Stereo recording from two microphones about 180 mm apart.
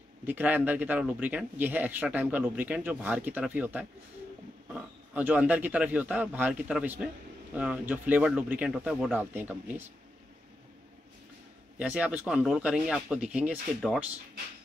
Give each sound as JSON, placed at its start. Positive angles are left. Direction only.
{"t": 0.3, "sound": "speech", "side_deg": -10}
{"t": 11.8, "sound": "speech", "side_deg": -10}